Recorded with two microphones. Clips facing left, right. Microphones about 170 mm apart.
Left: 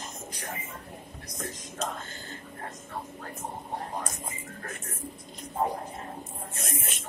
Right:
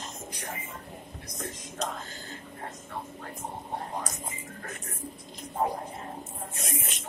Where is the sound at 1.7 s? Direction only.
Centre (ahead or behind).